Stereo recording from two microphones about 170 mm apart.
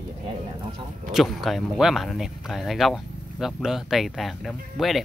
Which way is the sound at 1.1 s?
Centre (ahead or behind).